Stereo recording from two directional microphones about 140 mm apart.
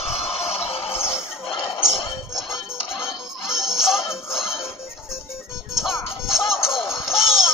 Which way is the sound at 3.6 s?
5° right (ahead or behind).